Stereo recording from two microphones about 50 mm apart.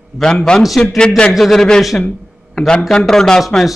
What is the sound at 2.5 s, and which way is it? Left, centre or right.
Speech, centre.